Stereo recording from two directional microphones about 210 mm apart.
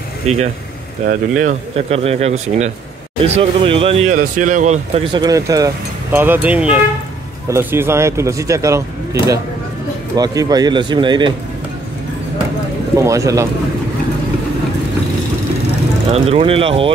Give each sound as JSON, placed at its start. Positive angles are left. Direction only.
{"t": 1.0, "sound": "speech", "side_deg": -40}
{"t": 5.1, "sound": "speech", "side_deg": -20}
{"t": 10.1, "sound": "speech", "side_deg": -15}
{"t": 12.9, "sound": "speech", "side_deg": -15}
{"t": 16.1, "sound": "speech", "side_deg": -30}